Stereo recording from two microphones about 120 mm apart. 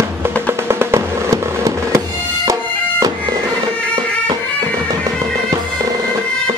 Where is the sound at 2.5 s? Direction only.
30° right (ahead or behind).